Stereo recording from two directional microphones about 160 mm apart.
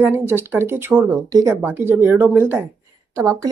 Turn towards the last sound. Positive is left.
turn(degrees=-20)  # may be behind; listen again after turning